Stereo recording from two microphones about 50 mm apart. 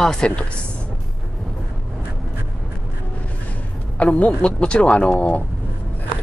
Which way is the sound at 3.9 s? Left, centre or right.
Left.